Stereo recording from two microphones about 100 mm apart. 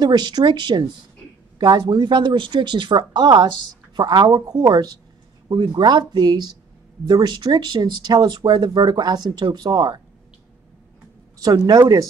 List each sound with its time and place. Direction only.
0.0 s speech: 45° right (ahead or behind)
11.4 s speech: 40° right (ahead or behind)